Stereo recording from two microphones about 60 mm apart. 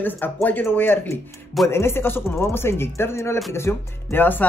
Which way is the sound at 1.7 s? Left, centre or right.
Left.